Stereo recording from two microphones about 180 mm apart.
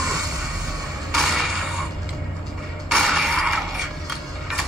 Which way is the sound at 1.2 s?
Centre (ahead or behind).